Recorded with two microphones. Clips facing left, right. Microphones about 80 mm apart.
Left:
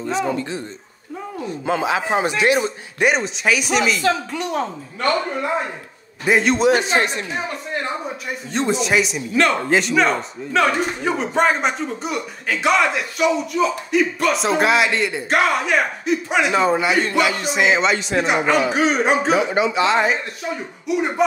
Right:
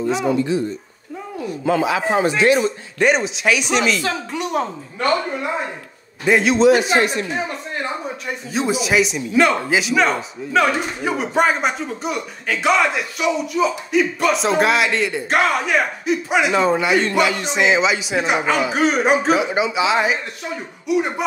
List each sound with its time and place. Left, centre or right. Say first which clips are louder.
1.7 s speech: right 2 dB; left
3.1 s a man's voice: right 1 dB; centre
4.0 s a woman's voice: left 3 dB; centre
6.2 s a man's voice: right 1 dB; centre
8.5 s a man's voice: right 1 dB; centre
19.4 s a woman's voice: left 1 dB; centre